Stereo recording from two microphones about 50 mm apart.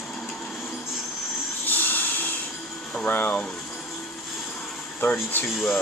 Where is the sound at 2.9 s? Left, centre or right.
Left.